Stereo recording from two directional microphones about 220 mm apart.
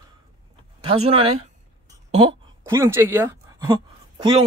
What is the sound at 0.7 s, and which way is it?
Speech, 25° right (ahead or behind).